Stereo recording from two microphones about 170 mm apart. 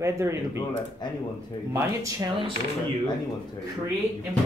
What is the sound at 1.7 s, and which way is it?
Speech, 15° right (ahead or behind).